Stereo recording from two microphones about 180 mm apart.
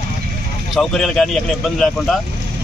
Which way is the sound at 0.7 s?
Centre (ahead or behind).